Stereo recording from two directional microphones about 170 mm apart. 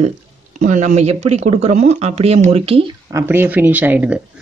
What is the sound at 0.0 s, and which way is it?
Speech, 50° right (ahead or behind).